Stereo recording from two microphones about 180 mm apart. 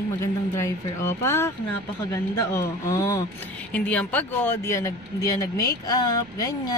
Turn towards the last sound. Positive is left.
turn(degrees=20)  # may be behind; listen again after turning